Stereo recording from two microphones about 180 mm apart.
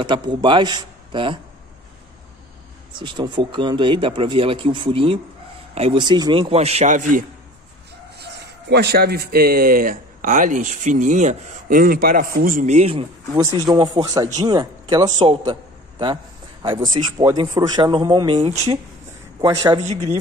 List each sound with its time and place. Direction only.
0.0 s speech: 25° right (ahead or behind)
3.0 s speech: 25° right (ahead or behind)
6.5 s a man's voice: 35° right (ahead or behind)
8.2 s speech: 70° right (ahead or behind); by 13.0 s 35° right (ahead or behind)
13.7 s speech: 20° right (ahead or behind)
17.2 s speech: 20° right (ahead or behind)
19.8 s a man's voice: 40° right (ahead or behind)